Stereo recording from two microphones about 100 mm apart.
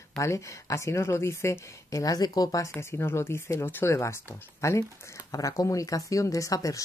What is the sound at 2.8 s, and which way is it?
Speech, 25° left (ahead or behind).